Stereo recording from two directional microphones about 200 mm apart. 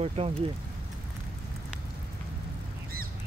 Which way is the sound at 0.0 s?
30° right (ahead or behind).